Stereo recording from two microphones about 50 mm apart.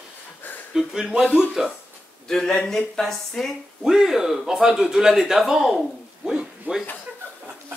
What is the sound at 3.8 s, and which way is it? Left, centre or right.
A man's voice, centre.